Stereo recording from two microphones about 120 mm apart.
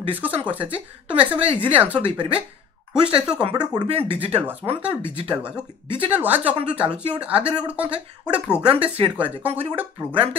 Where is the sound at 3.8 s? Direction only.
50° right (ahead or behind).